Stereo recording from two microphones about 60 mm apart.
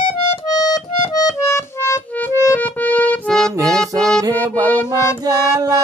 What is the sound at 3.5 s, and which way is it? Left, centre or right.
Music, right.